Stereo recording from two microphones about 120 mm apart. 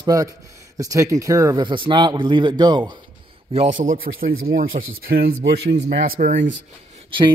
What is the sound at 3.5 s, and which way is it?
Speech, 75° right (ahead or behind).